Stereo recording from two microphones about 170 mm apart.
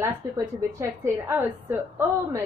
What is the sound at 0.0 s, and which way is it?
A woman's voice, 15° right (ahead or behind).